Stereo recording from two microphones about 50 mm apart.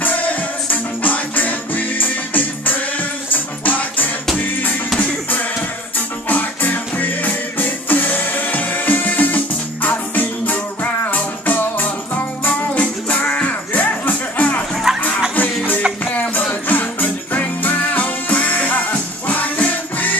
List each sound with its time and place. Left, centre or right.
0.0 s music: left
14.9 s music: centre
15.3 s music: left